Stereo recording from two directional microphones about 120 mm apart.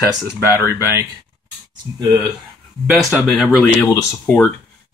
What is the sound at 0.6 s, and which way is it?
Speech, 20° right (ahead or behind).